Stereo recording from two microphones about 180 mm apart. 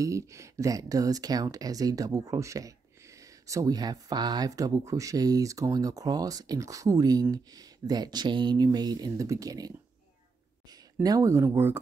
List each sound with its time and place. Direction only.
0.0 s speech: 15° right (ahead or behind)